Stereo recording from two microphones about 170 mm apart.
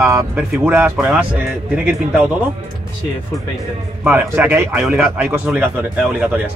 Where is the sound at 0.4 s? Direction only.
Centre (ahead or behind).